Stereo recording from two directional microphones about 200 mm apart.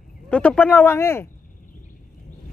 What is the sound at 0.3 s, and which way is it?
Speech, 5° left (ahead or behind).